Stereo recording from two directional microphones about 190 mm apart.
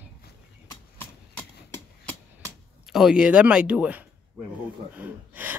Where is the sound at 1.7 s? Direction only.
5° left (ahead or behind).